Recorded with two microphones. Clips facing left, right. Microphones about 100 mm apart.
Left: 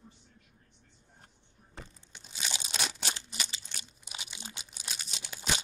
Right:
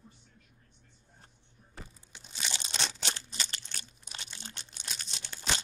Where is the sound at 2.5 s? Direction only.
10° left (ahead or behind).